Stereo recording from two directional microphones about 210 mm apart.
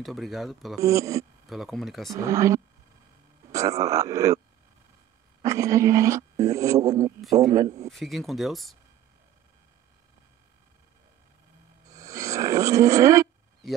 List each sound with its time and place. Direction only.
0.0 s speech: centre (ahead or behind)
0.7 s speech: 15° right (ahead or behind)
1.5 s speech: centre (ahead or behind)
2.1 s speech: 15° right (ahead or behind)
5.4 s speech: 15° right (ahead or behind)
7.9 s speech: centre (ahead or behind)
11.9 s a sound: 15° right (ahead or behind)